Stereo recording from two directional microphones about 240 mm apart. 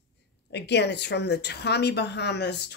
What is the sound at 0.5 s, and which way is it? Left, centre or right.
A woman's voice, left.